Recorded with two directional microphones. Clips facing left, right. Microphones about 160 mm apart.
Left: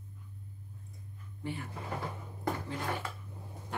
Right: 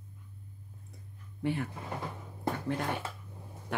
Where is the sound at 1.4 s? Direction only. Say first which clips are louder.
Right 7 dB; 70° right (ahead or behind).